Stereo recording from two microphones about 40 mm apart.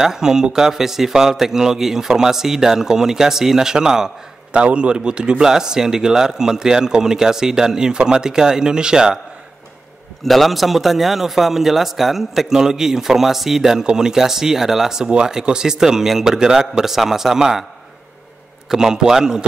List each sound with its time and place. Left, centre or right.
0.0 s a man's voice: centre
4.5 s a man's voice: right
10.2 s a man's voice: centre
18.7 s a man's voice: centre